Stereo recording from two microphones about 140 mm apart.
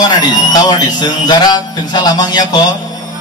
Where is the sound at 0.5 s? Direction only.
30° left (ahead or behind).